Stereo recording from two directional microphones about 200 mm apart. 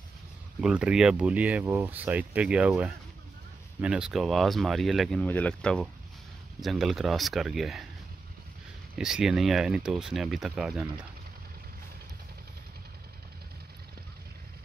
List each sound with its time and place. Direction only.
0.6 s speech: 5° right (ahead or behind)
8.9 s speech: 5° right (ahead or behind)